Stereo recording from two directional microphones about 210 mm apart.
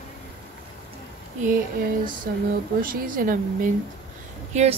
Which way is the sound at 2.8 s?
40° right (ahead or behind).